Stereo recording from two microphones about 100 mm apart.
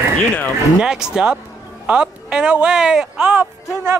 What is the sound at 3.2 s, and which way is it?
Speech, 25° right (ahead or behind).